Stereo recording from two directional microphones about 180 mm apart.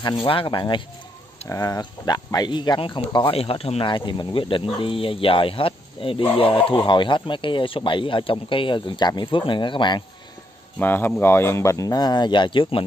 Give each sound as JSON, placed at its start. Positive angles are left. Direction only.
{"t": 0.0, "sound": "speech", "side_deg": 30}
{"t": 10.8, "sound": "speech", "side_deg": 10}